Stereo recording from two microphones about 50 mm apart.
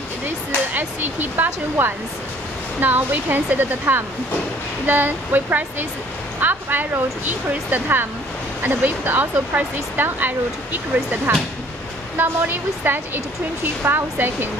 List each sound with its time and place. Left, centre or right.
0.7 s speech: right
12.2 s speech: right